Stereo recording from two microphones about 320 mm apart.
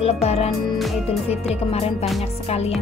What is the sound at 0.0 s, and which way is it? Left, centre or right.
Music, centre.